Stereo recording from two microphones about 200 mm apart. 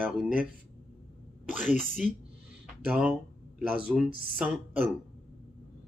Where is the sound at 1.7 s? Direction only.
35° left (ahead or behind).